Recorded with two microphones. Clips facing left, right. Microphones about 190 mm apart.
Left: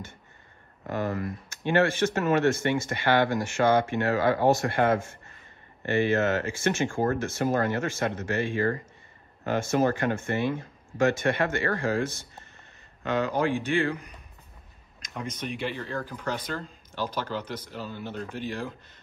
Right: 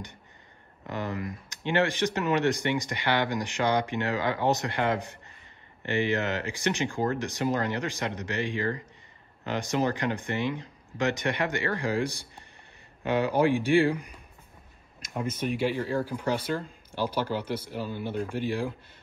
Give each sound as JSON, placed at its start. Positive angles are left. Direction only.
{"t": 0.9, "sound": "speech", "side_deg": -15}